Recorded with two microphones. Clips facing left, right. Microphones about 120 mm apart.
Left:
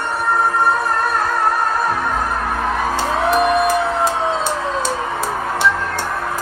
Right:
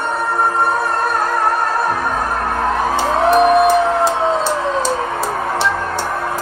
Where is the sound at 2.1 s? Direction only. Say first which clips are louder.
Right 1 dB; 10° right (ahead or behind).